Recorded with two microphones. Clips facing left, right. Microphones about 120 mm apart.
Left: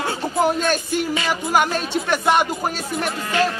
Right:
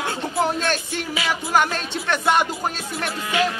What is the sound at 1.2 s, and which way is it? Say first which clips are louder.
Speech: left 2 dB; 5° right (ahead or behind).